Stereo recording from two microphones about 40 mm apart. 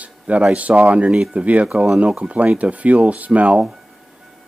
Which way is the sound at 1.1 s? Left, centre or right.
Centre.